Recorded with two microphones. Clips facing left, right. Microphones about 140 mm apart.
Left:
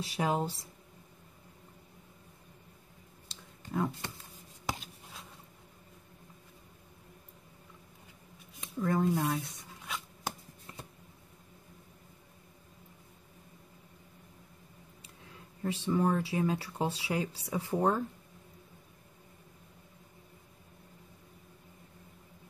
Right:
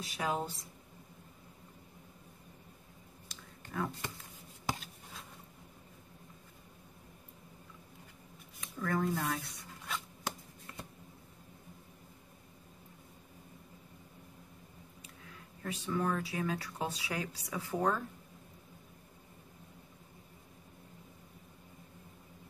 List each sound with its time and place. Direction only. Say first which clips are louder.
0.0 s speech: left 4 dB; 30° left (ahead or behind)
3.7 s speech: left 4 dB; 20° left (ahead or behind)
8.5 s speech: left 4 dB; 25° left (ahead or behind)
9.3 s a sound: left 3 dB; 5° left (ahead or behind)
15.6 s speech: left 5 dB; 25° left (ahead or behind)
17.7 s speech: left 3 dB; 35° left (ahead or behind)